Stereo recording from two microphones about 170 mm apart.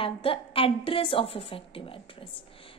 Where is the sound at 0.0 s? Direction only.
35° left (ahead or behind).